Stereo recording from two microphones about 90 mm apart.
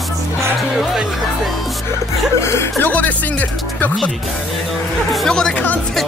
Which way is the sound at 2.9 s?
15° left (ahead or behind).